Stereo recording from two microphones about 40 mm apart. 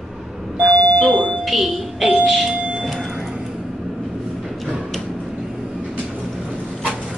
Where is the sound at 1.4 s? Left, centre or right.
Centre.